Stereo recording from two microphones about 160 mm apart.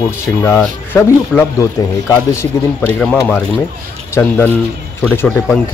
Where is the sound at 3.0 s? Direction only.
5° left (ahead or behind).